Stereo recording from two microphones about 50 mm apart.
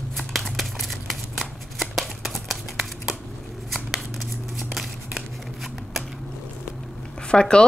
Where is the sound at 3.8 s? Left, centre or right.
Centre.